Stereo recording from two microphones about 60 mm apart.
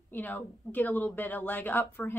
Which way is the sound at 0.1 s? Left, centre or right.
Left.